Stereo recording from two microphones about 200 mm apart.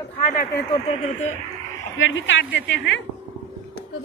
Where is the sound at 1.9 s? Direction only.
70° left (ahead or behind).